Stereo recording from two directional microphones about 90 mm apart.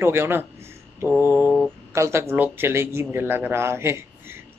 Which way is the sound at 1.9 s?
30° right (ahead or behind).